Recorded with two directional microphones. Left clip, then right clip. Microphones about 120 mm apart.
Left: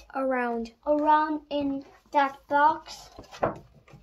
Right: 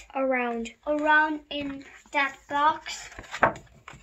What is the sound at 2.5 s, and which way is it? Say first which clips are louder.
Speech: left 1 dB; 70° left (ahead or behind).